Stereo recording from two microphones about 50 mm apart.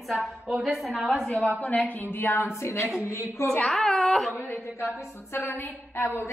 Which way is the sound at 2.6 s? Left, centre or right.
Left.